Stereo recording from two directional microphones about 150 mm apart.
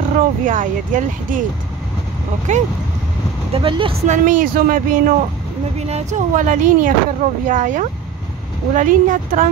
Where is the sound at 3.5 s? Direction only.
35° right (ahead or behind).